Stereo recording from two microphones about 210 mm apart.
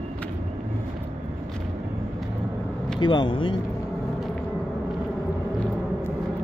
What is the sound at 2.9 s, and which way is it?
Speech, 20° left (ahead or behind).